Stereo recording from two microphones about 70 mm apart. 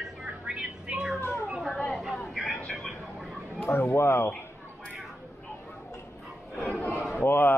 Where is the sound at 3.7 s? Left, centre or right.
Left.